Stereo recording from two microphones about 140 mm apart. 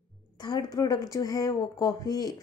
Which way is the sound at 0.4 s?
30° left (ahead or behind).